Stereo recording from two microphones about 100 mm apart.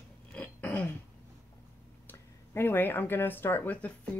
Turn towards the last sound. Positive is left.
turn(degrees=20)  # may be behind; listen again after turning